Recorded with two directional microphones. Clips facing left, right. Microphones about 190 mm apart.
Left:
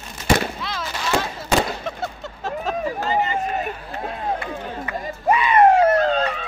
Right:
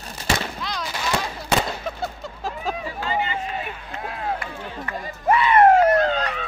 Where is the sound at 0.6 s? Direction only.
5° left (ahead or behind).